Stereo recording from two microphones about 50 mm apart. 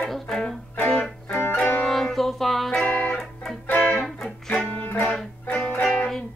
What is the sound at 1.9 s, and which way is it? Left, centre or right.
Music, centre.